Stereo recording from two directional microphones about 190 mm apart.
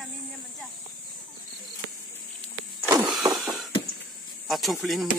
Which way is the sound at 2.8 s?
20° right (ahead or behind).